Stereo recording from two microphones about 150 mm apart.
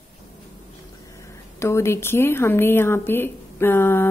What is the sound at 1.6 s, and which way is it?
Speech, 15° left (ahead or behind).